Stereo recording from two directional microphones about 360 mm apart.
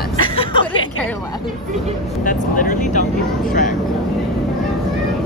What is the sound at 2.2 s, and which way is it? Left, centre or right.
Speech, left.